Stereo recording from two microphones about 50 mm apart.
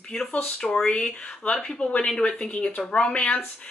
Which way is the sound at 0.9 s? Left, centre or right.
Left.